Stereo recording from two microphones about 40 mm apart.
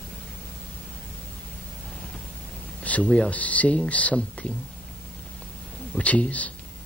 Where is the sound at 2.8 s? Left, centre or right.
Left.